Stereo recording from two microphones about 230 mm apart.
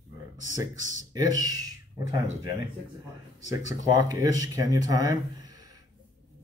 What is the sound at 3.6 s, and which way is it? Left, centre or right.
Speech, centre.